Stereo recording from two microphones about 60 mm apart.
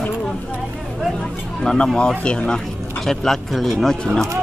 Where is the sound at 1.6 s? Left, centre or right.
Centre.